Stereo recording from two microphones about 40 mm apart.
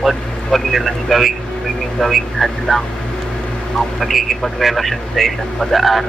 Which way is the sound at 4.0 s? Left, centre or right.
Centre.